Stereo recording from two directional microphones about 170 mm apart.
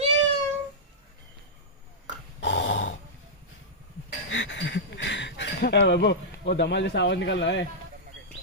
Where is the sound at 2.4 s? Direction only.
90° left.